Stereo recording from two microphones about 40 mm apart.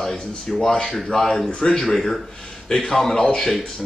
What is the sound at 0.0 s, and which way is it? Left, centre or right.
Speech, centre.